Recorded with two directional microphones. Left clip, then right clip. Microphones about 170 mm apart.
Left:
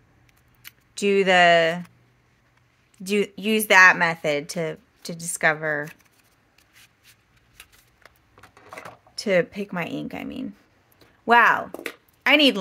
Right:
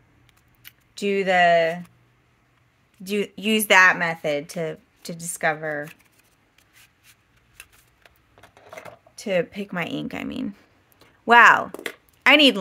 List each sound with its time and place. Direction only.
0.6 s speech: 5° left (ahead or behind)
3.0 s a woman's voice: 10° left (ahead or behind)
3.3 s speech: 10° right (ahead or behind)
3.9 s a woman's voice: centre (ahead or behind)
8.4 s a sound: 20° left (ahead or behind)
9.4 s speech: centre (ahead or behind); by 10.5 s 20° right (ahead or behind)
11.0 s a sound: 15° right (ahead or behind)